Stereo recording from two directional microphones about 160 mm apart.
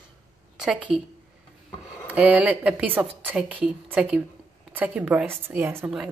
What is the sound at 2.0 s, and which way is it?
A woman's voice, 10° right (ahead or behind).